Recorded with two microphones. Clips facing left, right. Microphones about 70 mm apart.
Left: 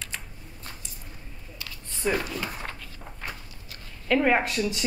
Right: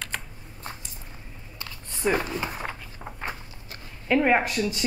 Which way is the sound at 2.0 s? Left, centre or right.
Right.